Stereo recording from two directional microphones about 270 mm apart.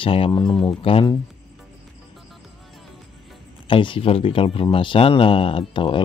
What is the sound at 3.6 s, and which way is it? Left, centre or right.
Speech, centre.